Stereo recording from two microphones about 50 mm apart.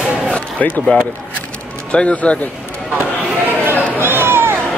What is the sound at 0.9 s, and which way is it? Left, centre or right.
Speech, left.